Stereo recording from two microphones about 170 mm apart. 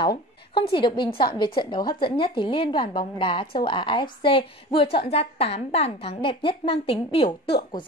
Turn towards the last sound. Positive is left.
turn(degrees=30)  # may be behind; listen again after turning